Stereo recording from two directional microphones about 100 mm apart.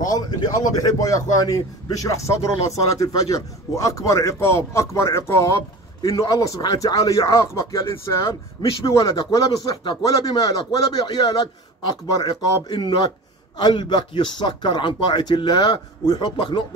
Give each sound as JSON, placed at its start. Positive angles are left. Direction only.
{"t": 0.0, "sound": "speech", "side_deg": 40}
{"t": 7.2, "sound": "speech", "side_deg": 30}